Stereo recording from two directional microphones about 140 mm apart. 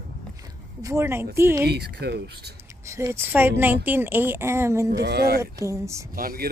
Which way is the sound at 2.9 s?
20° right (ahead or behind).